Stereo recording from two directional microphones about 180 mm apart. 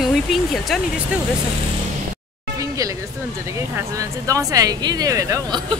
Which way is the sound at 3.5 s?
15° right (ahead or behind).